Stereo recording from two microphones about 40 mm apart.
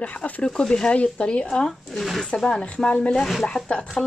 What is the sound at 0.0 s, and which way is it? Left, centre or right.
A woman's voice, left.